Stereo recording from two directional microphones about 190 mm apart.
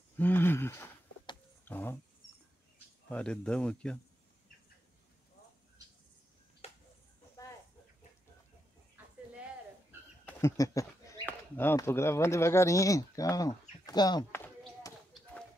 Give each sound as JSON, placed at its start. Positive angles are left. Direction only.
{"t": 0.2, "sound": "a sound", "side_deg": 10}
{"t": 1.6, "sound": "power windows", "side_deg": 10}
{"t": 3.1, "sound": "speech", "side_deg": 5}
{"t": 10.2, "sound": "speech", "side_deg": 15}
{"t": 14.8, "sound": "basketball bounce", "side_deg": 20}